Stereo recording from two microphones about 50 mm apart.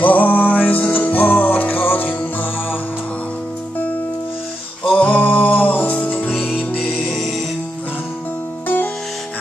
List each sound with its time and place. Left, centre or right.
0.0 s music: left
4.9 s music: left
6.5 s music: centre
8.6 s music: left